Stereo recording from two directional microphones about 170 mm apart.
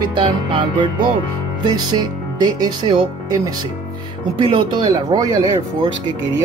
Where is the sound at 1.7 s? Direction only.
25° right (ahead or behind).